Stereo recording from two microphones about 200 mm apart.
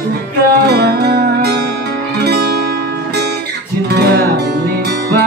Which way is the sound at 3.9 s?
55° right (ahead or behind).